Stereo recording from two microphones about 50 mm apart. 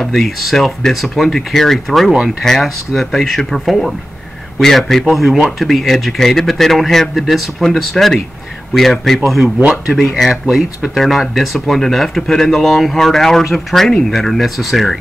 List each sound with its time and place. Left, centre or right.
0.0 s a man's voice: centre